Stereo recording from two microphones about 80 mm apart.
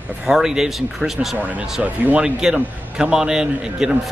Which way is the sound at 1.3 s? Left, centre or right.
Right.